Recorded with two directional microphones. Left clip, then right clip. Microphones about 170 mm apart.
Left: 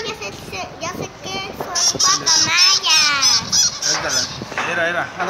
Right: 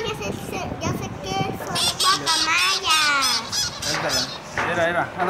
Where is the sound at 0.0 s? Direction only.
60° right (ahead or behind).